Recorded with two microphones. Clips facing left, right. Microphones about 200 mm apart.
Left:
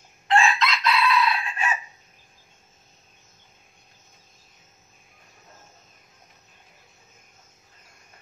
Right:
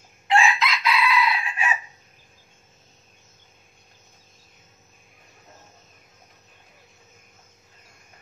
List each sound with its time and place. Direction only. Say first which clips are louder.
0.3 s chicken: even; 15° right (ahead or behind)